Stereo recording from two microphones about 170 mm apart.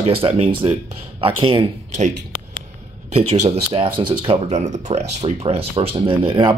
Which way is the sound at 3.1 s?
40° right (ahead or behind).